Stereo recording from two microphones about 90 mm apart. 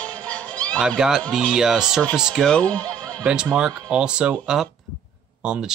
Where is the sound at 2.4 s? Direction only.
15° left (ahead or behind).